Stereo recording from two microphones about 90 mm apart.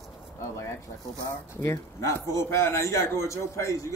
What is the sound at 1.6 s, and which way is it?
A man's voice, 30° left (ahead or behind).